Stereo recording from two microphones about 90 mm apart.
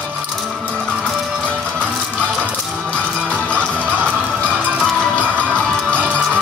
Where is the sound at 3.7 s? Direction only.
20° right (ahead or behind).